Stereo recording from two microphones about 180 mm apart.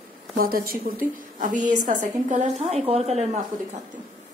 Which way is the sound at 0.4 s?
55° right (ahead or behind).